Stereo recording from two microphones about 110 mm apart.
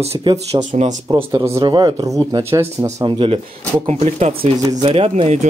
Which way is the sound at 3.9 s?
80° right.